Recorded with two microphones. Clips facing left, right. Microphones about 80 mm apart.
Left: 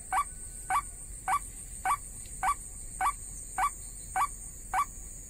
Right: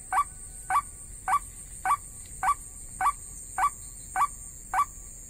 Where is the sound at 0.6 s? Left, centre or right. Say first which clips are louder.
Right 4 dB; centre.